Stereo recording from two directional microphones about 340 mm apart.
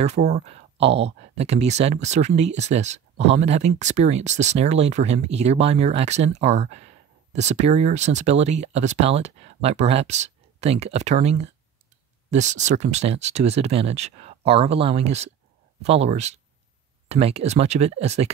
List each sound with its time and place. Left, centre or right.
0.0 s speech: centre